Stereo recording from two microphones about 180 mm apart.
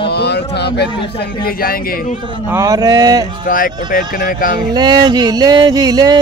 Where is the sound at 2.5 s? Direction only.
20° right (ahead or behind).